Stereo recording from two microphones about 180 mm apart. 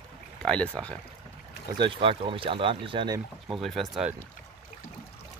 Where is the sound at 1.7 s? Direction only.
30° right (ahead or behind).